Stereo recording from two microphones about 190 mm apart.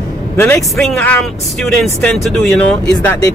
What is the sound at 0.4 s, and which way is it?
Speech, 5° left (ahead or behind).